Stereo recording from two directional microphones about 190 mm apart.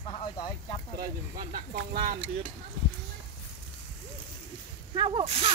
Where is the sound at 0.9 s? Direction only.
45° right (ahead or behind).